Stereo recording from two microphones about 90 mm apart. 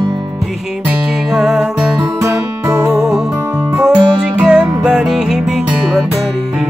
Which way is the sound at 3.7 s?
10° right (ahead or behind).